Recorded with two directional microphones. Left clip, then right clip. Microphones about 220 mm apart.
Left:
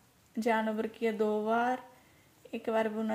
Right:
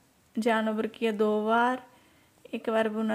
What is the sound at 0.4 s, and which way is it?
A woman's voice, 25° right (ahead or behind).